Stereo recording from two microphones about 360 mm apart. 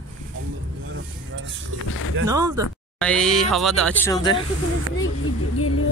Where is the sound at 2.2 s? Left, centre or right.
Centre.